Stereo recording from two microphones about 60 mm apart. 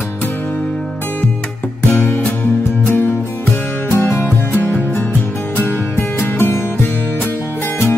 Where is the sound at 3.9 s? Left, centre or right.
Left.